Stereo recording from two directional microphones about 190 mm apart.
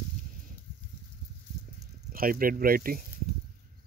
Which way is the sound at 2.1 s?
50° right (ahead or behind).